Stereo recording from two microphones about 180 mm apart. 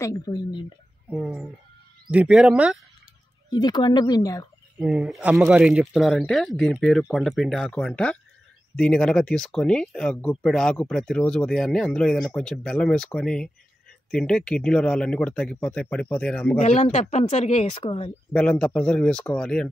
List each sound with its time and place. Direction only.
0.0 s speech: 20° left (ahead or behind)
1.1 s speech: centre (ahead or behind)
3.4 s speech: 20° left (ahead or behind)
4.7 s speech: 5° right (ahead or behind)
16.5 s speech: 35° left (ahead or behind)
18.3 s speech: 5° left (ahead or behind)